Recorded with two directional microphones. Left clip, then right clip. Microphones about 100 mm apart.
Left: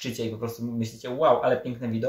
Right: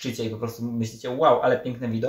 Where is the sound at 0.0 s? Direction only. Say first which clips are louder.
Right 1 dB; 30° left (ahead or behind).